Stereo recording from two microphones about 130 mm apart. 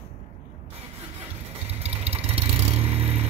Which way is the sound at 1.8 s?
50° right (ahead or behind).